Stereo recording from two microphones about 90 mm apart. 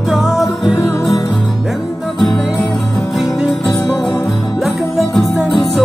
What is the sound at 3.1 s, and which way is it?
Music, centre (ahead or behind).